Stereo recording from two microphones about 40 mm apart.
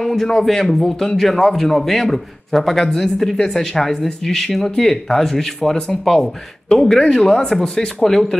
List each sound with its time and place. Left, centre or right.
0.0 s a man's voice: centre
8.0 s speech: centre